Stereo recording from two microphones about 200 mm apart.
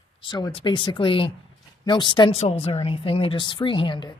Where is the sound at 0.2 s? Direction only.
25° left (ahead or behind).